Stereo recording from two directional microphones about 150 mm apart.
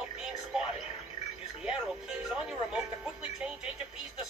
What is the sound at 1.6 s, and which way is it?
Speech, 5° right (ahead or behind).